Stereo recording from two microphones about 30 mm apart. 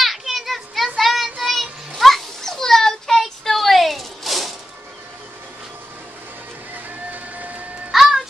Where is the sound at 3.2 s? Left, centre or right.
Centre.